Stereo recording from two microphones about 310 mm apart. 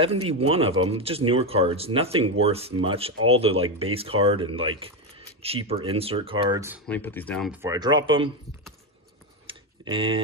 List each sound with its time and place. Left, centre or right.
0.3 s speech: centre
6.9 s speech: centre
7.7 s speech: centre
9.5 s tick-tock: centre